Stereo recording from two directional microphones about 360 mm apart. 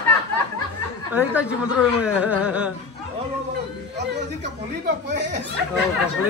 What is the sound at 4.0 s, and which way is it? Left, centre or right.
Speech, right.